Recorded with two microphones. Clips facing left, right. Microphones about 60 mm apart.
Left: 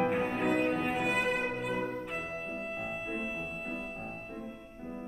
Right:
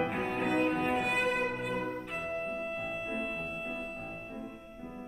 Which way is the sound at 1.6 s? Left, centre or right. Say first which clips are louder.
Left 1 dB; centre.